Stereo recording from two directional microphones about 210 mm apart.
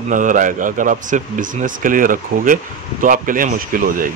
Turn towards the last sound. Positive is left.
turn(degrees=-40)  # may be behind; listen again after turning